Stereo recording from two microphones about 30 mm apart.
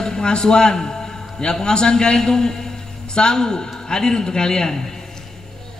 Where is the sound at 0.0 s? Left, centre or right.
Left.